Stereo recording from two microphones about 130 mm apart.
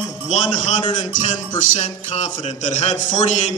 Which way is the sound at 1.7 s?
65° left (ahead or behind).